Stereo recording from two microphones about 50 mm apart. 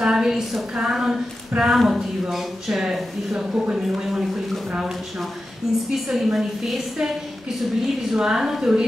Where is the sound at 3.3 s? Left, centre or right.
Centre.